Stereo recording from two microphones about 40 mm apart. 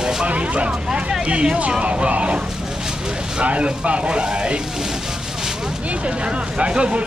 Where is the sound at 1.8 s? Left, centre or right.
Right.